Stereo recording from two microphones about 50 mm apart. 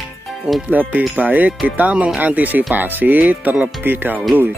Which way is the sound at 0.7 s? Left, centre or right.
Right.